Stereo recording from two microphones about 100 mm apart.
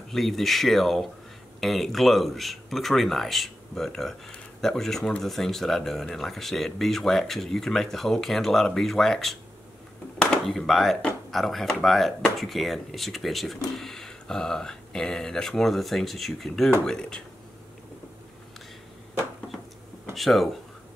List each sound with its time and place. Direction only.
0.1 s a man's voice: centre (ahead or behind)
20.2 s speech: centre (ahead or behind)